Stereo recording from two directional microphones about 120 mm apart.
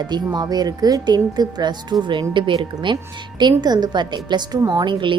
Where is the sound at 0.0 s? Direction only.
35° right (ahead or behind).